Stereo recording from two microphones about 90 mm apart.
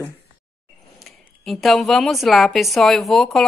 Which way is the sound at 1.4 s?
Centre (ahead or behind).